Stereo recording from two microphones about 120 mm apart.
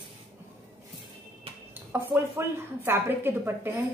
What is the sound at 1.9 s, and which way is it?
Speech, 20° right (ahead or behind).